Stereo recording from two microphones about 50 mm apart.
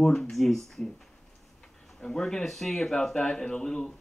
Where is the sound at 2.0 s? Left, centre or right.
Centre.